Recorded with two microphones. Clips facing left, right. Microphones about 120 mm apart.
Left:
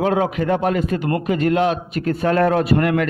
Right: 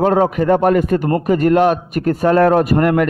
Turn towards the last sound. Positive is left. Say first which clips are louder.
# right 4 dB
turn(degrees=-45)  # may be behind; listen again after turning